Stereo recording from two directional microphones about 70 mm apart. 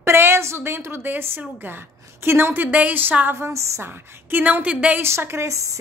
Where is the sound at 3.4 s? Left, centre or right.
Right; by 5.0 s centre.